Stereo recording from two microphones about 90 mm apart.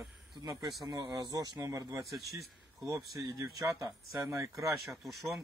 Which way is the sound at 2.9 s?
40° right (ahead or behind).